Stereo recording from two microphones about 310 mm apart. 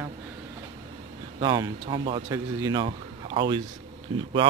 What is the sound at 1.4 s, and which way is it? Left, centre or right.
Speech, centre.